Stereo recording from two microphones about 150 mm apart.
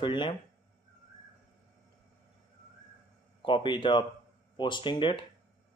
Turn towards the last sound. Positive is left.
turn(degrees=35)  # may be behind; listen again after turning